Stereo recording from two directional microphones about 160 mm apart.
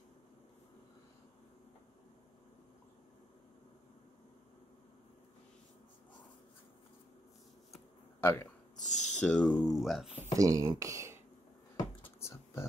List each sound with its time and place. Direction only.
8.2 s speech: 15° left (ahead or behind)
8.7 s a sound: 50° left (ahead or behind)
9.1 s speech: 5° left (ahead or behind)
10.3 s speech: 20° right (ahead or behind)
12.2 s typing: 15° left (ahead or behind)